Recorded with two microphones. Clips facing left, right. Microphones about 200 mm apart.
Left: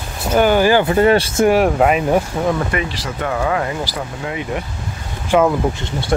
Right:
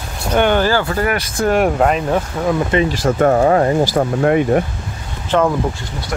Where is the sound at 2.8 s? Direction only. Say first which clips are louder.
Right 9 dB; 50° right (ahead or behind).